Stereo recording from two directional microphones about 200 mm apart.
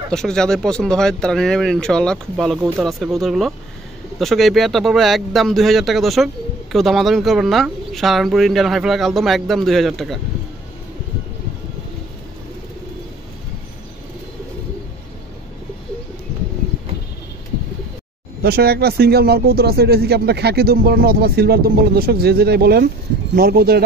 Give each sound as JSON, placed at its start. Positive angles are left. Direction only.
{"t": 0.1, "sound": "speech", "side_deg": 5}
{"t": 18.4, "sound": "speech", "side_deg": -50}